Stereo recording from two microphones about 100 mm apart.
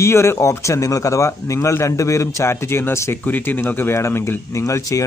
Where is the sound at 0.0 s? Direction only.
25° left (ahead or behind).